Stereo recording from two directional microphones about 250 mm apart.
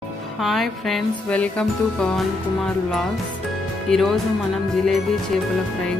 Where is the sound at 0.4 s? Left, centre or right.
Centre.